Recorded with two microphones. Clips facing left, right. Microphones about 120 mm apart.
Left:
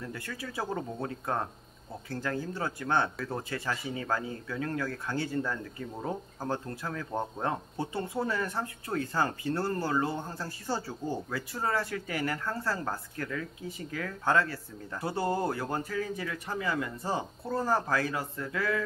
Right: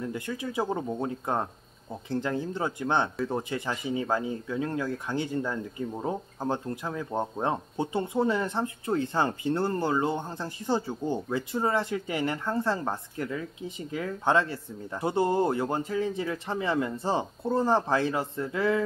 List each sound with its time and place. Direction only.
0.1 s speech: 20° right (ahead or behind)